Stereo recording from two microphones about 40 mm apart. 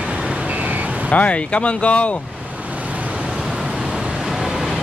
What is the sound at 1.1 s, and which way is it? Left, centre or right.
Speech, left.